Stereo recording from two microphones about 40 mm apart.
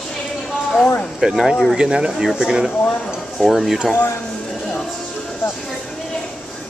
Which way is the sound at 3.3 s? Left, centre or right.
Centre.